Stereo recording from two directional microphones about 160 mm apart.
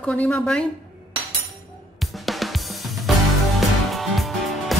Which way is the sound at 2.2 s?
Centre (ahead or behind).